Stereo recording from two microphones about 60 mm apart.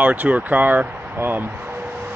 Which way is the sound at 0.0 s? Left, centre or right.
Right.